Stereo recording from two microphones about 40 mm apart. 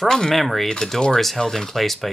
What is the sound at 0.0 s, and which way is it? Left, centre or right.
Speech, centre.